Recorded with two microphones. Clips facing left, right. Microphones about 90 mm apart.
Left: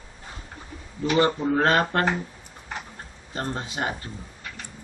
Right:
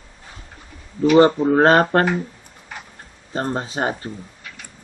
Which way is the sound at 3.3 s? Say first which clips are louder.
Right 6 dB; 35° right (ahead or behind).